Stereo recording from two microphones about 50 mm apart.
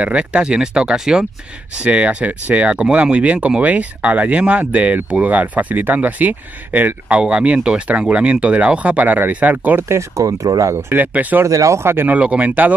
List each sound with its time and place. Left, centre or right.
0.0 s speech: right
1.8 s speech: right
7.1 s speech: right
9.8 s speech: right
10.9 s speech: right
11.4 s speech: right
12.1 s speech: right